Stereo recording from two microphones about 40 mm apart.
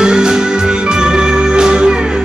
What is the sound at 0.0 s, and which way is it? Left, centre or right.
Music, centre.